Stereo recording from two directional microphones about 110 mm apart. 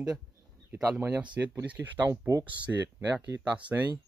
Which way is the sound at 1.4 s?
20° right (ahead or behind).